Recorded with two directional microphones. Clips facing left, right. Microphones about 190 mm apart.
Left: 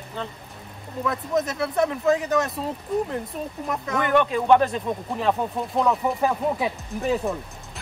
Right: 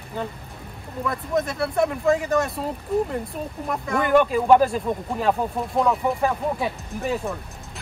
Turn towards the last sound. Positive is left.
turn(degrees=0)  # may be behind; listen again after turning